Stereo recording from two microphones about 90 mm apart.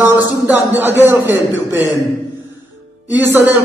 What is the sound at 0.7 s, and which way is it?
A man's voice, 25° right (ahead or behind).